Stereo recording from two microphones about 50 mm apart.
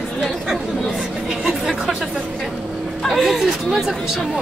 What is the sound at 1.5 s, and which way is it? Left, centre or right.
Speech, centre.